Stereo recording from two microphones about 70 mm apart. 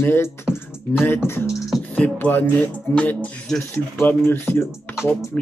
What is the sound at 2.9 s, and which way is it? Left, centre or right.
Speech, centre.